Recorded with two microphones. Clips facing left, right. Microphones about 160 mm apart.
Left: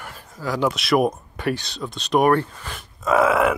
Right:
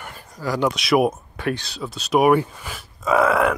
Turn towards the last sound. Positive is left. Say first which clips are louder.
# even
turn(degrees=0)  # may be behind; listen again after turning